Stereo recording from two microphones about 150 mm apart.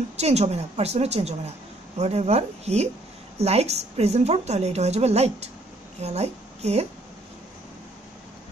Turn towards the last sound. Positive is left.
turn(degrees=-45)  # may be behind; listen again after turning